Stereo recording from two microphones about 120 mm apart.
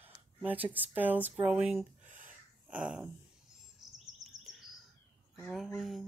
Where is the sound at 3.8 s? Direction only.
Centre (ahead or behind).